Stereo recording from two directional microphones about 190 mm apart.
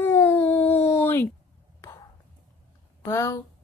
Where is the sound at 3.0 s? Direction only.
15° left (ahead or behind).